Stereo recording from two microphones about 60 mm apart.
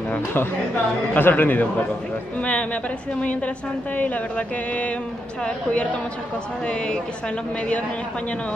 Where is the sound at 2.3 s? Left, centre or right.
Centre.